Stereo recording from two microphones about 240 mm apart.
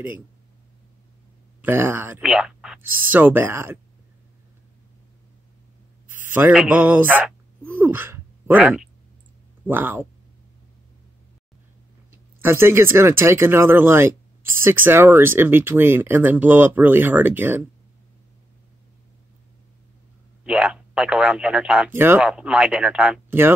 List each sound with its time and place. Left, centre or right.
1.6 s speech: centre
6.0 s speech: centre
12.1 s speech: centre
20.4 s speech: centre